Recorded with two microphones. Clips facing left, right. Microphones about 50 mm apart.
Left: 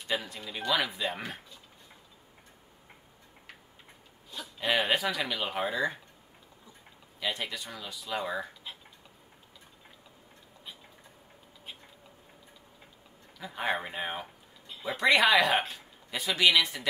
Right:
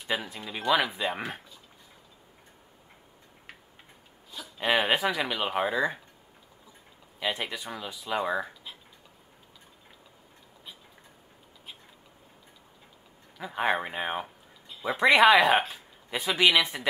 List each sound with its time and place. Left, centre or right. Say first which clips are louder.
0.0 s speech: right 2 dB; centre
4.6 s speech: right 3 dB; centre
7.2 s speech: right 3 dB; centre
13.4 s speech: right 4 dB; centre
14.7 s a sound: right 4 dB; centre
15.0 s speech: right 4 dB; centre
16.2 s speech: right 2 dB; centre